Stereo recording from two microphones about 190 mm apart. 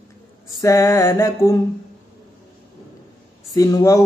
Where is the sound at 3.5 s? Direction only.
20° left (ahead or behind).